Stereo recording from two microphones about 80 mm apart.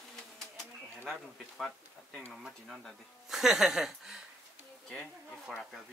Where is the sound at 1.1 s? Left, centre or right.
Centre.